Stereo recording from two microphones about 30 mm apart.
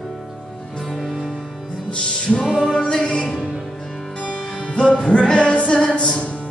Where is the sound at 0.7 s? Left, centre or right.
Centre.